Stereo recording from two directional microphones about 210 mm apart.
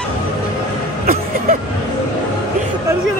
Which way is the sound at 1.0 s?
40° right (ahead or behind).